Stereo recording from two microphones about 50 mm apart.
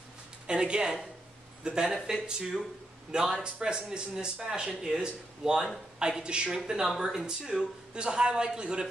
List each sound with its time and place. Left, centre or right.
0.5 s speech: centre